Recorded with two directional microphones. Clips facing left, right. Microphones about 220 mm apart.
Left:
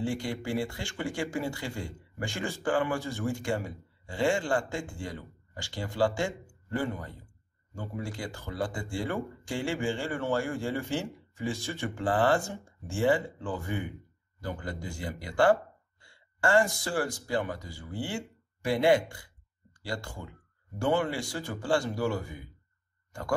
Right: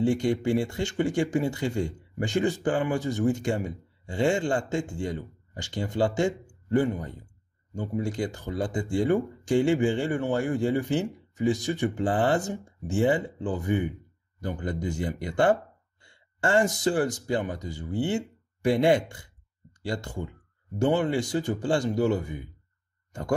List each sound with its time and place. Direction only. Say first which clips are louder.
0.0 s speech: right 8 dB; 20° right (ahead or behind)